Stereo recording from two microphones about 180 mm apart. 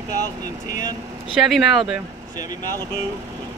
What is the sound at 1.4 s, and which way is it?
Speech, centre (ahead or behind).